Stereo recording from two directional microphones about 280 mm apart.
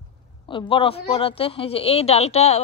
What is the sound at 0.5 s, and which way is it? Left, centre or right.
Speech, centre.